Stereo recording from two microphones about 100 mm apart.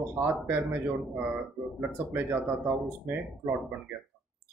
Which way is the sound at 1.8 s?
20° right (ahead or behind).